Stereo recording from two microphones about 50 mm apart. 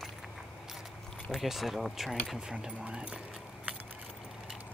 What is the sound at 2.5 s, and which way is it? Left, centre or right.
Speech, right.